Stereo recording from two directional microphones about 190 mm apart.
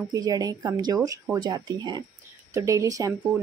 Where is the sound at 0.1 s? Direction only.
20° right (ahead or behind).